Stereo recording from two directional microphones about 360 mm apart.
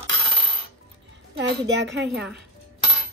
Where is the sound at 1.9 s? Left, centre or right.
Right.